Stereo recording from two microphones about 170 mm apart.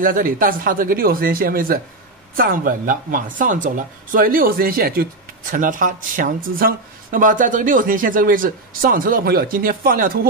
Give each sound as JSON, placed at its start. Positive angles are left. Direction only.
{"t": 0.0, "sound": "speech", "side_deg": -55}